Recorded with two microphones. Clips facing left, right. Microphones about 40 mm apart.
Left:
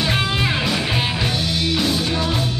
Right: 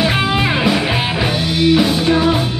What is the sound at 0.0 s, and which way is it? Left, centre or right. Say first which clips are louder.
Music: right 5 dB; centre.